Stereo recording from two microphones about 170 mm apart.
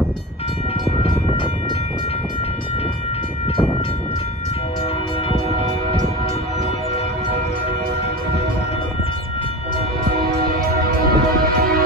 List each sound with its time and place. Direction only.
10.4 s music: 60° right (ahead or behind)